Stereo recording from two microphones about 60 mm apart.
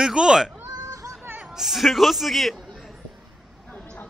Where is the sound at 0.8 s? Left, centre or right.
Right.